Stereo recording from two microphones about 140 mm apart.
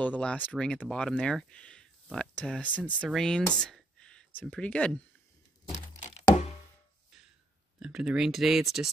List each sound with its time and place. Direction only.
0.0 s speech: 10° left (ahead or behind)
5.7 s a sound: 55° left (ahead or behind)
7.8 s speech: 5° right (ahead or behind)